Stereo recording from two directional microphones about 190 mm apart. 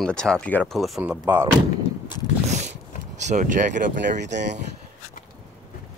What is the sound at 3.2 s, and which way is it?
Speech, 40° right (ahead or behind).